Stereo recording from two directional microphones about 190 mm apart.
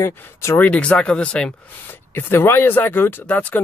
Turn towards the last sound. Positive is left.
turn(degrees=10)  # may be behind; listen again after turning